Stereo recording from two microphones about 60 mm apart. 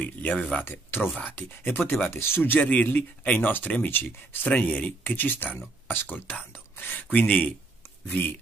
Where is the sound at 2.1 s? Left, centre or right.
Left.